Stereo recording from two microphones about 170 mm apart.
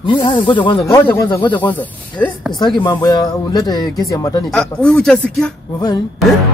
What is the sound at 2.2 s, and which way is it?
Speech, 10° left (ahead or behind).